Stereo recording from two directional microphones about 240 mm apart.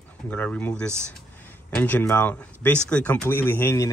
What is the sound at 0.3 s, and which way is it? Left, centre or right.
Speech, centre.